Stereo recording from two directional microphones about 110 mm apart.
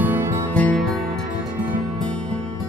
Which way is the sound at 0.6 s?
10° left (ahead or behind).